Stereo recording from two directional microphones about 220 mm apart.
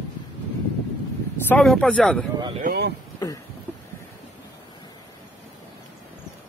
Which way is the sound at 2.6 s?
45° right (ahead or behind).